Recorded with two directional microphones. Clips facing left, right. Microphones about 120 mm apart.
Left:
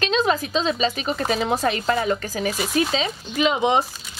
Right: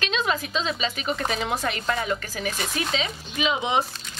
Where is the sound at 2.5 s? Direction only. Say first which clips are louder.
Left 7 dB; 5° left (ahead or behind).